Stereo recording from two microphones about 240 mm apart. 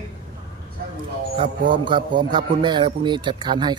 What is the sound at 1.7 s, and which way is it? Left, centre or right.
A man's voice, centre.